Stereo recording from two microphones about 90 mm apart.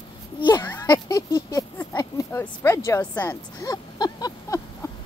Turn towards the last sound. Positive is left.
turn(degrees=45)  # may be behind; listen again after turning